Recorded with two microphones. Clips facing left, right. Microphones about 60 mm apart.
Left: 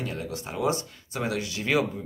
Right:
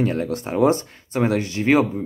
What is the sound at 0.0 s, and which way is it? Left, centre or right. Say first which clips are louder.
Speech: right 11 dB; right.